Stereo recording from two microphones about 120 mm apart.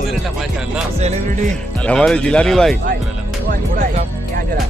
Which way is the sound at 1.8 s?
10° left (ahead or behind).